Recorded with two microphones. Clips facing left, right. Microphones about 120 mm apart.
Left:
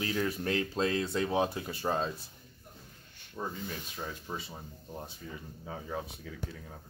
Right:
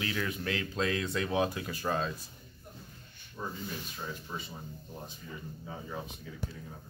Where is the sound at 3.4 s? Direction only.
30° left (ahead or behind).